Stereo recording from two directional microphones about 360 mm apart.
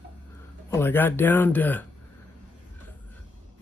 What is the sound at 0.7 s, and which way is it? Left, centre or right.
Speech, centre.